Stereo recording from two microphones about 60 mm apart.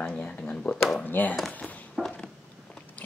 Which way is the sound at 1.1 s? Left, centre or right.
Left.